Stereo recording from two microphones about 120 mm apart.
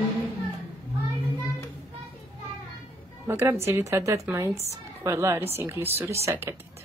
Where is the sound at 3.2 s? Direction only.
25° right (ahead or behind).